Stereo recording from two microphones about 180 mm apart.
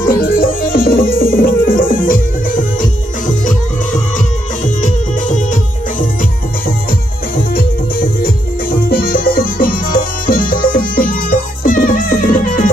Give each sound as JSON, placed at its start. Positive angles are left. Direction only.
{"t": 0.2, "sound": "music", "side_deg": 50}
{"t": 4.8, "sound": "music", "side_deg": 45}
{"t": 7.5, "sound": "music", "side_deg": 55}